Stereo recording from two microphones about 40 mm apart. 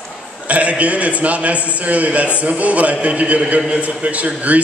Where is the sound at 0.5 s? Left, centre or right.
Right.